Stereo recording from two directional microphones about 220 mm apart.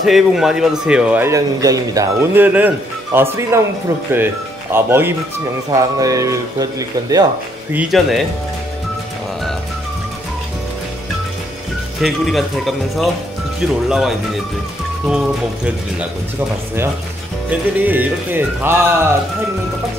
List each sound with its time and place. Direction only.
0.0 s speech: centre (ahead or behind)
4.7 s speech: 10° right (ahead or behind)
7.7 s speech: centre (ahead or behind)
12.0 s speech: centre (ahead or behind)
17.5 s speech: 5° right (ahead or behind)